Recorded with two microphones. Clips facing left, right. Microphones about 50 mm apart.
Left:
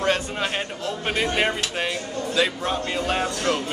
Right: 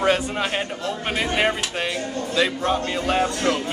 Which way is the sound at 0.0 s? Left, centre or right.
Centre.